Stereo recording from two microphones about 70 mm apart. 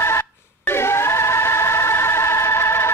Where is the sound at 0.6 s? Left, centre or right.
Left.